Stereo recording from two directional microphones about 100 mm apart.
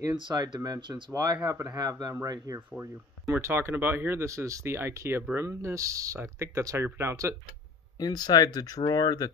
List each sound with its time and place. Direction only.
0.2 s speech: 50° right (ahead or behind)
1.1 s speech: 40° right (ahead or behind)
2.8 s speech: 25° right (ahead or behind)
8.0 s speech: 40° left (ahead or behind)